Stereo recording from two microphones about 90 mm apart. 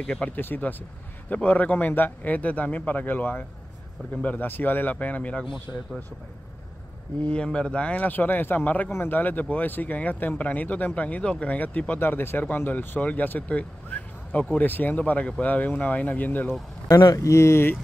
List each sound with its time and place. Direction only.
0.0 s speech: 10° left (ahead or behind)
0.4 s speech: 20° left (ahead or behind)
7.2 s speech: 10° left (ahead or behind)
16.9 s speech: 40° left (ahead or behind)